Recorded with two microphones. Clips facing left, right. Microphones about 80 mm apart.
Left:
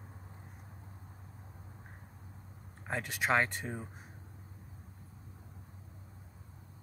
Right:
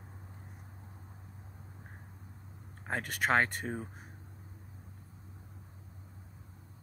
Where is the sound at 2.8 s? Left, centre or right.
Right.